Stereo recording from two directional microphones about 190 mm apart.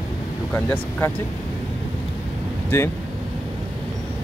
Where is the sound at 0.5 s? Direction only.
10° left (ahead or behind).